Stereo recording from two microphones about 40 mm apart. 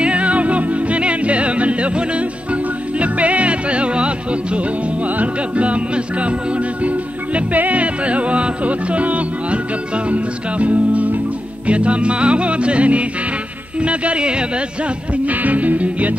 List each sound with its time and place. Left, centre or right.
0.0 s music: right
7.3 s music: right
13.7 s speech: right
15.2 s music: right